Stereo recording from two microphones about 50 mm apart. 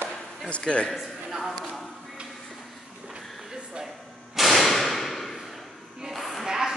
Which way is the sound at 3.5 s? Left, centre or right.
Centre.